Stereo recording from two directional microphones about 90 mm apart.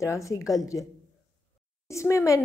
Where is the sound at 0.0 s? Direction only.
35° left (ahead or behind).